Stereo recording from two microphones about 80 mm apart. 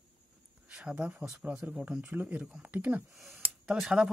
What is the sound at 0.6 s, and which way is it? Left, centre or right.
Speech, centre.